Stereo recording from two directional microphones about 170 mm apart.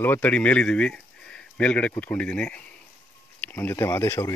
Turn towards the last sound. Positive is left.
turn(degrees=15)  # may be behind; listen again after turning